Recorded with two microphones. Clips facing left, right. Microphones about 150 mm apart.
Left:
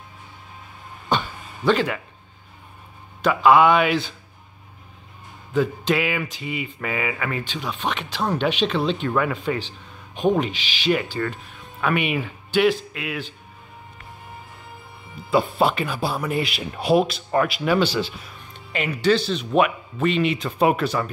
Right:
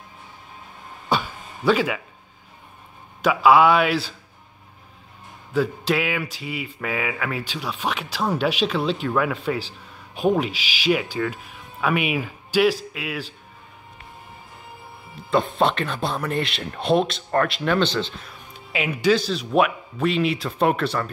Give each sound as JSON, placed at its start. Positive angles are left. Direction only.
{"t": 1.0, "sound": "a sound", "side_deg": -5}
{"t": 3.3, "sound": "speech", "side_deg": -5}
{"t": 5.5, "sound": "speech", "side_deg": 0}
{"t": 15.3, "sound": "speech", "side_deg": 5}
{"t": 18.5, "sound": "speech", "side_deg": -5}